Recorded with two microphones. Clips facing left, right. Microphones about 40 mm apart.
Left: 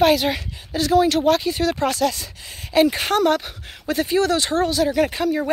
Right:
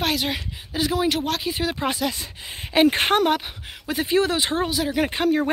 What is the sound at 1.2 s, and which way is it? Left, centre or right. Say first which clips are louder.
Speech: left 8 dB; centre.